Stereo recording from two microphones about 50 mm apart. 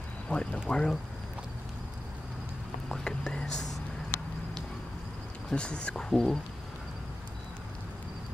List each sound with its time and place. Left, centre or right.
0.3 s speech: centre
3.0 s speech: centre
5.5 s speech: centre